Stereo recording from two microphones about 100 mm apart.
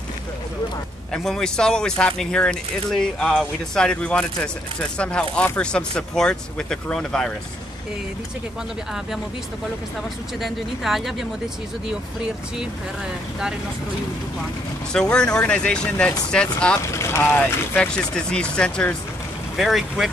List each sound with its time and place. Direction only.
1.1 s speech: 5° left (ahead or behind)
10.4 s speech: centre (ahead or behind)
14.9 s speech: 10° left (ahead or behind)
16.8 s speech: 30° left (ahead or behind)
17.7 s speech: 10° left (ahead or behind)
19.5 s speech: 5° right (ahead or behind)